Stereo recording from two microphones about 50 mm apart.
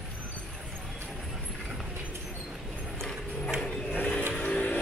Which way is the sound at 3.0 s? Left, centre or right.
Centre.